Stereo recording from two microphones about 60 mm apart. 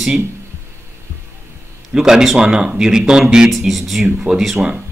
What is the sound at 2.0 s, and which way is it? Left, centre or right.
Speech, centre.